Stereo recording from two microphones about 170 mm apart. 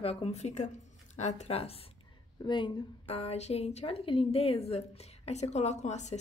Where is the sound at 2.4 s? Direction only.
30° left (ahead or behind).